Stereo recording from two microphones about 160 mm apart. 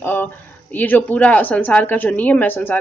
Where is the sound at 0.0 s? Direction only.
10° left (ahead or behind).